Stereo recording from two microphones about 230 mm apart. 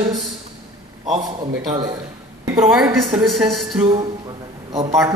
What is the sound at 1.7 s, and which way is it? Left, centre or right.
Speech, centre.